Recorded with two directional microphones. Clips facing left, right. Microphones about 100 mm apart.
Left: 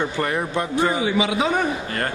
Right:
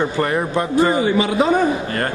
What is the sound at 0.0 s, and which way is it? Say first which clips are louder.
Speech: right 4 dB; 40° right (ahead or behind).